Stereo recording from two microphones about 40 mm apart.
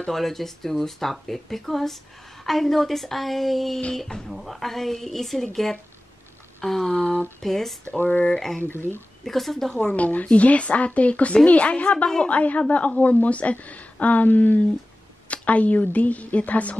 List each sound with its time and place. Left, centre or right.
0.1 s speech: centre
7.9 s speech: left
8.3 s speech: centre
8.6 s speech: left
9.2 s speech: centre
9.9 s speech: left
13.0 s speech: left
15.2 s speech: left